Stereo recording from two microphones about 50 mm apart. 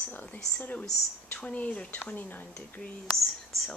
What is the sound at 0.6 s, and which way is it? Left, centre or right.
A woman's voice, left.